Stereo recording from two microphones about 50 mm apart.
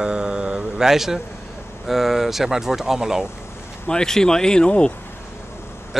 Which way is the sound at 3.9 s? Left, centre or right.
Centre.